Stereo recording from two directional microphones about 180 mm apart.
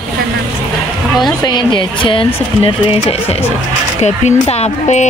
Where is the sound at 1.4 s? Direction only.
25° left (ahead or behind).